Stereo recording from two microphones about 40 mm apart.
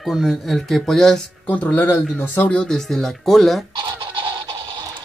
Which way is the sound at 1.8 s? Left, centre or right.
Left.